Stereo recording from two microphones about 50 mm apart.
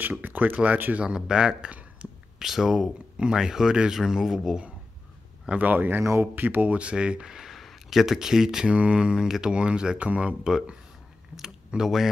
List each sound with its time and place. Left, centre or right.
0.0 s speech: right
0.9 s speech: centre
5.5 s speech: right
6.8 s speech: right
7.3 s a sound: centre
8.6 s speech: right
10.4 s speech: centre